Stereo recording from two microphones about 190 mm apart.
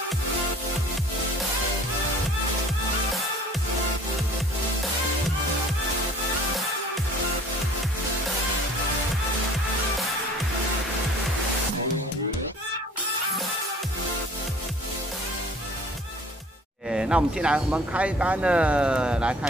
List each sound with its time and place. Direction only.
16.9 s speech: 5° right (ahead or behind)